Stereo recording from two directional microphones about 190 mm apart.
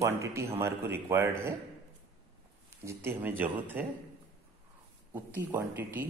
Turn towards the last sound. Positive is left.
turn(degrees=-10)  # may be behind; listen again after turning